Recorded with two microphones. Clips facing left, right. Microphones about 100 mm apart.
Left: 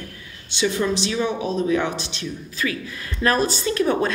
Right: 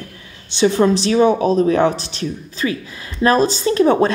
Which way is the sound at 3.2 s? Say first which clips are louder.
Right 6 dB; 25° right (ahead or behind).